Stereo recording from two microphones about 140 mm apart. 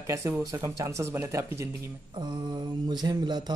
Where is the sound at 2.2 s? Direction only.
30° right (ahead or behind).